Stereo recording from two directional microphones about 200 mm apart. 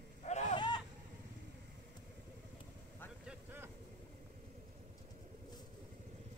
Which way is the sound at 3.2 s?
5° right (ahead or behind).